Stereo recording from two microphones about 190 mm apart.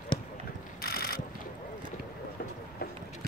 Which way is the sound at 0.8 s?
50° left (ahead or behind).